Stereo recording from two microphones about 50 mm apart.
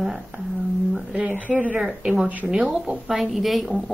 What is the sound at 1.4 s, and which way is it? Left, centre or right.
Speech, right.